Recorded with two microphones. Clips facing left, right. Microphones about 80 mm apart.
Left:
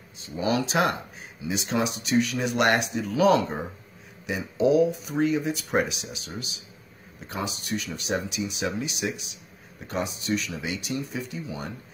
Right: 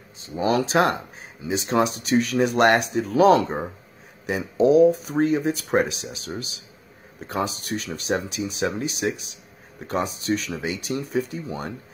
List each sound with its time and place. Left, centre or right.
0.2 s speech: right